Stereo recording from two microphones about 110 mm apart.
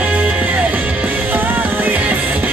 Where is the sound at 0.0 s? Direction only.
15° right (ahead or behind).